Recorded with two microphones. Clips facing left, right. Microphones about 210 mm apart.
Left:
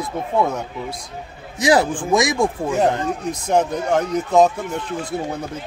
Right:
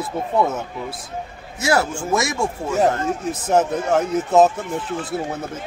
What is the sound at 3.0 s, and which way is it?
Speech, 5° right (ahead or behind).